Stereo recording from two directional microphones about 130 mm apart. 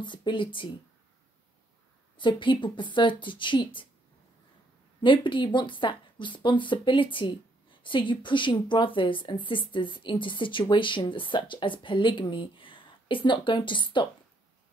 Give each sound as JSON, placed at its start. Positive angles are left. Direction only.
{"t": 0.0, "sound": "a woman's voice", "side_deg": 35}
{"t": 2.1, "sound": "a woman's voice", "side_deg": 40}
{"t": 5.0, "sound": "a woman's voice", "side_deg": 40}